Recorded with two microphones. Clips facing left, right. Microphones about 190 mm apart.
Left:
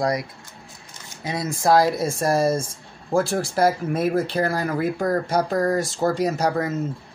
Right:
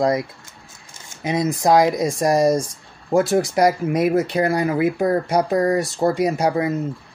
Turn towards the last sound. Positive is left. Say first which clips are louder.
# right 3 dB
turn(degrees=-15)  # may be behind; listen again after turning